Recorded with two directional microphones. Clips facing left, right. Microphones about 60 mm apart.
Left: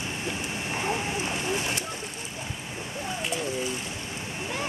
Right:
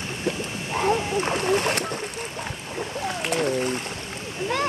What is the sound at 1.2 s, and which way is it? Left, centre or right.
Speech, right.